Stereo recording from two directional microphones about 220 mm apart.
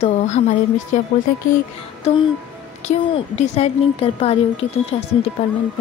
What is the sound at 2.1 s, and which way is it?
A woman's voice, 30° left (ahead or behind).